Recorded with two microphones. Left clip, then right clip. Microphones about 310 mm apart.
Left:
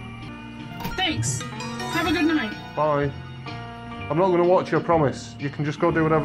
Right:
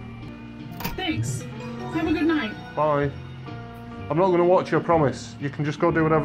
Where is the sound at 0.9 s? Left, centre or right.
Left.